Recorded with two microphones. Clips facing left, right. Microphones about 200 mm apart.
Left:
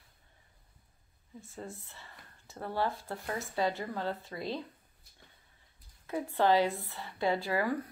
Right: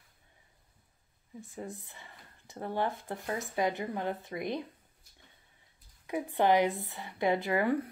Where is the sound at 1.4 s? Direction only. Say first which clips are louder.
Right 3 dB; 15° right (ahead or behind).